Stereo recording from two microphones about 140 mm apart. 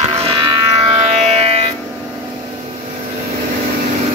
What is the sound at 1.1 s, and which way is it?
Music, 45° right (ahead or behind).